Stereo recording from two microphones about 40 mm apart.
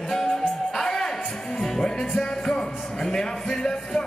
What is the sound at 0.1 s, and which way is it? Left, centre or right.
Music, centre.